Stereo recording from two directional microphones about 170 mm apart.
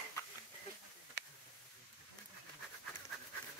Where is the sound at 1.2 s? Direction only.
80° right.